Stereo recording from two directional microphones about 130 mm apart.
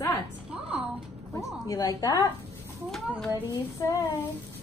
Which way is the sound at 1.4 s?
25° left (ahead or behind).